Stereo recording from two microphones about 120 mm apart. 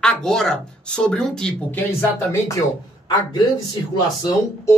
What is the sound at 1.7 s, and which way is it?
Speech, 20° left (ahead or behind).